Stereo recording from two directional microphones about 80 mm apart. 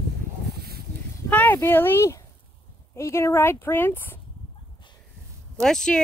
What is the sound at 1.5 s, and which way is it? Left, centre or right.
Speech, left.